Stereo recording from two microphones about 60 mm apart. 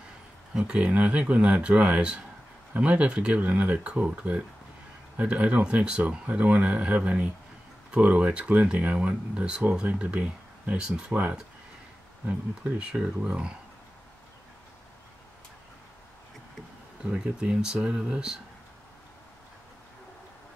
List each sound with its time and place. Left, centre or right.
0.6 s speech: centre
12.7 s speech: centre
17.0 s speech: centre